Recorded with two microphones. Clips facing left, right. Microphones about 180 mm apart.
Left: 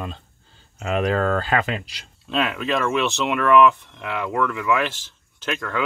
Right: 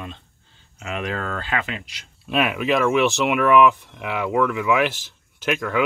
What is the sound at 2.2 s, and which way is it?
Speech, 10° right (ahead or behind).